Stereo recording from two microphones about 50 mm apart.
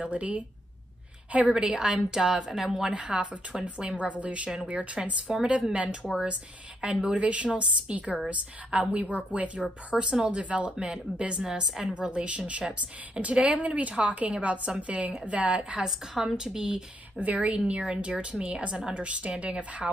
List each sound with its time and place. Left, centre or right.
0.0 s speech: right
1.5 s a woman's voice: centre
2.9 s speech: right
3.6 s speech: right
11.4 s a woman's voice: centre
11.9 s speech: right
16.2 s a woman's voice: centre
17.2 s speech: right